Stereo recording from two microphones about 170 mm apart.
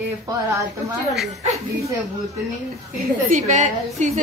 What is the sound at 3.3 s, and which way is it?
Speech, 45° right (ahead or behind).